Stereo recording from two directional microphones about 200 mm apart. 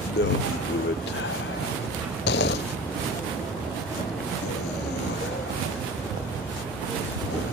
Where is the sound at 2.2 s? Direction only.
60° left (ahead or behind).